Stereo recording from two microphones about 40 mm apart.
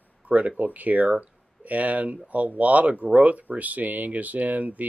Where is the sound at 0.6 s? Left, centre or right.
Right.